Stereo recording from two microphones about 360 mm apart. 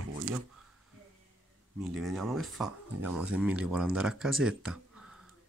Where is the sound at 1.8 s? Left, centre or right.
Centre.